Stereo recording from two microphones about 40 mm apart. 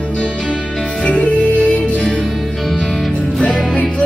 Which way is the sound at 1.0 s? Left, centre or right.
Left.